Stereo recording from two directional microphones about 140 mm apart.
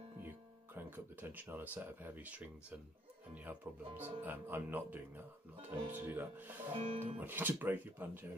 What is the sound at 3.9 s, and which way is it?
Speech, 15° right (ahead or behind).